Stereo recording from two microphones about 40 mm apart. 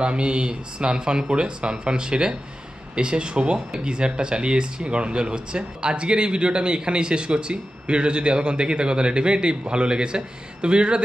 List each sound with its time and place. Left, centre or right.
0.0 s speech: right